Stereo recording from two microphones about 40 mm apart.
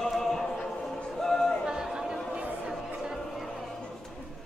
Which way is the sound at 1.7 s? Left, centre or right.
Centre.